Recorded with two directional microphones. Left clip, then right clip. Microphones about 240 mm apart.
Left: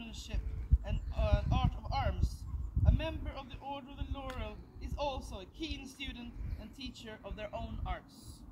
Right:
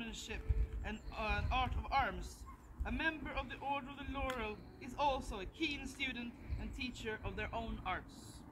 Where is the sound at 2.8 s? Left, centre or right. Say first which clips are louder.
Right 1 dB; left.